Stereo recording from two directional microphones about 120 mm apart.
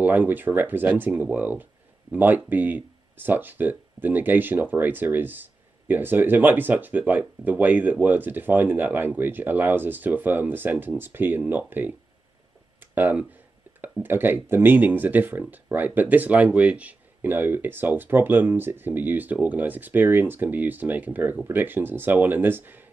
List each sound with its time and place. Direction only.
0.0 s speech: 15° right (ahead or behind)
12.9 s speech: 15° right (ahead or behind)
13.7 s a sound: 15° right (ahead or behind)
14.0 s speech: 15° right (ahead or behind)